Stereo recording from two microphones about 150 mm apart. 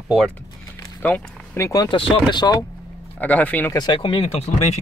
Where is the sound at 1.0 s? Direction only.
10° left (ahead or behind).